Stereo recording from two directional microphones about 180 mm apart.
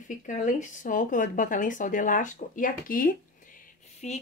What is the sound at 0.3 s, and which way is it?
Speech, 45° left (ahead or behind).